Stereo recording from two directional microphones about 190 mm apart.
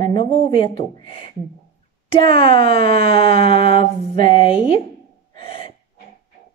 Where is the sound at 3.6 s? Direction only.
45° right (ahead or behind).